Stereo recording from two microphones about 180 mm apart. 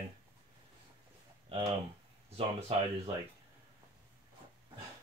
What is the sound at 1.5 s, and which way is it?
Speech, 35° right (ahead or behind).